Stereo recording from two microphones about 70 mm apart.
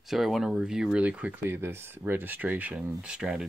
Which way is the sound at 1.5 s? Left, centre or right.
Right.